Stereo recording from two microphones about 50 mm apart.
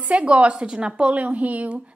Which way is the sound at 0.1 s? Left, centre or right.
Right.